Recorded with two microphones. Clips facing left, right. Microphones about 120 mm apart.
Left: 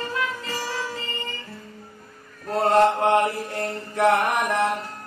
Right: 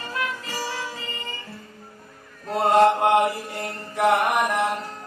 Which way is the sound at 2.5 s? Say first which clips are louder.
Right 1 dB; 5° right (ahead or behind).